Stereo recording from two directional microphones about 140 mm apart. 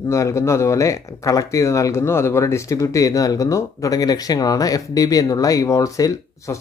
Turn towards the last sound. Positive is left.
turn(degrees=25)  # may be behind; listen again after turning